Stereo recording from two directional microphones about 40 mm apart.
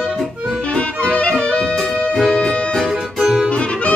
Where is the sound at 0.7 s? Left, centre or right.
Left.